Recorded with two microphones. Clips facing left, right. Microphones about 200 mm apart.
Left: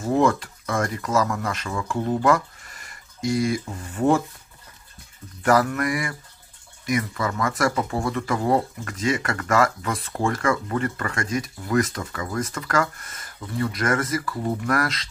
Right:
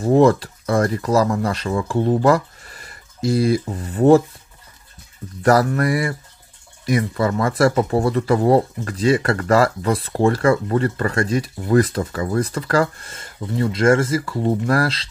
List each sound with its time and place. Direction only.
0.0 s speech: 35° right (ahead or behind)
5.4 s speech: 40° right (ahead or behind)